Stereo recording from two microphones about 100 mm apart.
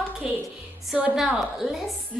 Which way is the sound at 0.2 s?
5° right (ahead or behind).